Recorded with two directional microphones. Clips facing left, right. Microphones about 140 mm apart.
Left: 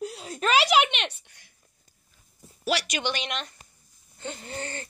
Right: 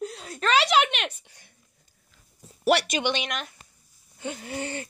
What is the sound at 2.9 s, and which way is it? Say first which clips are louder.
Speech: right 3 dB; 20° right (ahead or behind).